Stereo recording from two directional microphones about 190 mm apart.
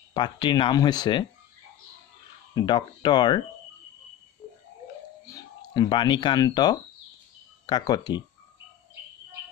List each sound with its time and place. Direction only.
0.1 s speech: 25° left (ahead or behind)
2.5 s speech: 25° left (ahead or behind)
4.4 s tick-tock: 10° left (ahead or behind)
5.2 s speech: 20° left (ahead or behind)